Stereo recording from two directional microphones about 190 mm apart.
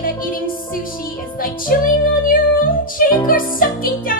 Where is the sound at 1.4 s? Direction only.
45° left (ahead or behind).